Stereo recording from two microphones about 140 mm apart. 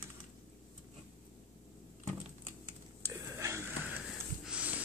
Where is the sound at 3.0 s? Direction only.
20° right (ahead or behind).